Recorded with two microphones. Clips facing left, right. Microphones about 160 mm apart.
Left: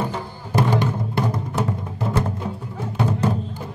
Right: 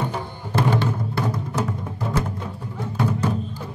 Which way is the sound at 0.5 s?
15° left (ahead or behind).